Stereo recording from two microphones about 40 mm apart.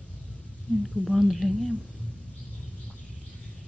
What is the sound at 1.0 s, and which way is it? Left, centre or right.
Speech, centre.